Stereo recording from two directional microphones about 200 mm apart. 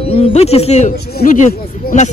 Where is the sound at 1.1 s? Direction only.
45° left (ahead or behind).